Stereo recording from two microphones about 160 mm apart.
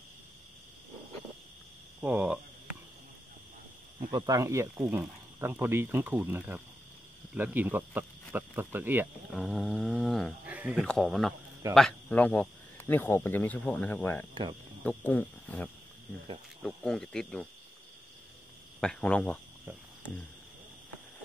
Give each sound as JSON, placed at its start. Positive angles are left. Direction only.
{"t": 2.0, "sound": "speech", "side_deg": -10}
{"t": 4.1, "sound": "speech", "side_deg": -20}
{"t": 9.3, "sound": "a sound", "side_deg": 0}
{"t": 10.4, "sound": "insect", "side_deg": -10}
{"t": 10.8, "sound": "a sound", "side_deg": 0}
{"t": 11.7, "sound": "speech", "side_deg": 5}
{"t": 14.3, "sound": "speech", "side_deg": -30}
{"t": 14.8, "sound": "speech", "side_deg": 10}
{"t": 16.6, "sound": "a sound", "side_deg": 5}
{"t": 18.8, "sound": "speech", "side_deg": 5}